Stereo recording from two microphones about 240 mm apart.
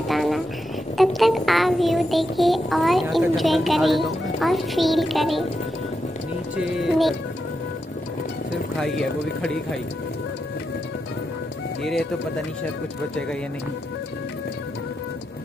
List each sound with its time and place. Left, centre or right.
0.1 s a sound: centre
0.9 s music: centre
6.5 s music: centre
11.8 s speech: centre